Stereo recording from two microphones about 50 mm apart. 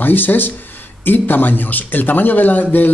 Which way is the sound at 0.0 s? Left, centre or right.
Left.